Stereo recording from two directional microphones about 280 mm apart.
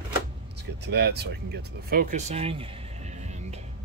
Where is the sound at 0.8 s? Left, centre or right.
Right.